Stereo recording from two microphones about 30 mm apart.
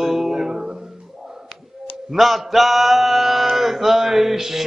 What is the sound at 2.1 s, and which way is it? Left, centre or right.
Mantra, centre.